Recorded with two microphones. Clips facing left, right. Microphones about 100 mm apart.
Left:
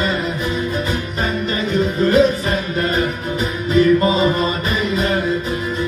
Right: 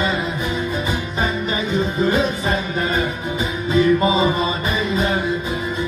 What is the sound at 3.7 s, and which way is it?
Music, 15° right (ahead or behind).